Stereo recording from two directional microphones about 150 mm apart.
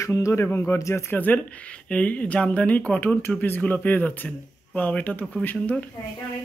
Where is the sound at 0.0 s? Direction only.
20° left (ahead or behind).